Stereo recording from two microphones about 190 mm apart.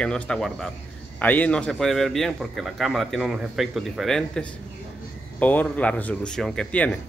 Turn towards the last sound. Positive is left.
turn(degrees=5)  # may be behind; listen again after turning